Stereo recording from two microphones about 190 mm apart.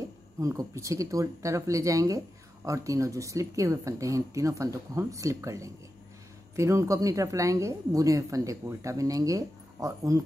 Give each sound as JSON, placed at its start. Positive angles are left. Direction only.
{"t": 0.4, "sound": "speech", "side_deg": -15}